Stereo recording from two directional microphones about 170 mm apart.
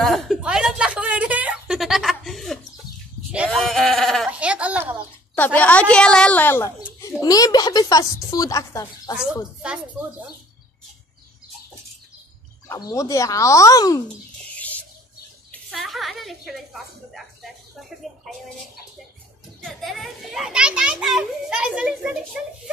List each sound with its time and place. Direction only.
0.0 s a sound: centre (ahead or behind)
3.3 s sheep: 5° right (ahead or behind)
5.3 s a woman's voice: 10° left (ahead or behind)
9.6 s speech: 5° right (ahead or behind)
12.6 s speech: 20° left (ahead or behind)
15.7 s a woman's voice: centre (ahead or behind)
19.6 s a child's voice: centre (ahead or behind)